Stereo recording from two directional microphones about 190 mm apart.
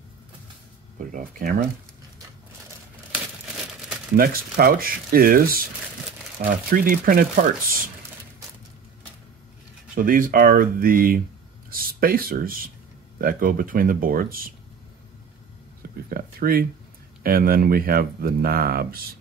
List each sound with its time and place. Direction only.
0.9 s speech: 45° right (ahead or behind)
4.2 s speech: 50° right (ahead or behind)
9.9 s speech: 45° right (ahead or behind)
16.1 s speech: 50° right (ahead or behind)